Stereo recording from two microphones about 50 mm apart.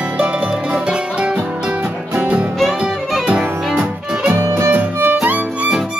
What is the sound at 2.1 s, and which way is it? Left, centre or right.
Music, right.